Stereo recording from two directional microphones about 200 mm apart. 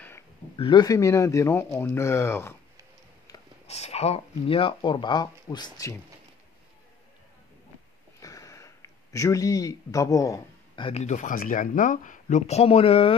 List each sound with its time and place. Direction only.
0.6 s speech: 25° left (ahead or behind)
3.6 s speech: 30° left (ahead or behind)
8.2 s a sound: 15° left (ahead or behind)
10.9 s speech: 35° left (ahead or behind)